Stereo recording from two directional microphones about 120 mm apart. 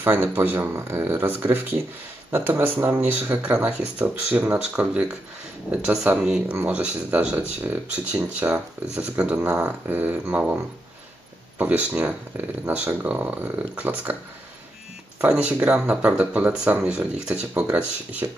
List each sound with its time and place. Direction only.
0.0 s speech: 20° right (ahead or behind)
11.5 s speech: 10° right (ahead or behind)
15.1 s speech: 10° right (ahead or behind)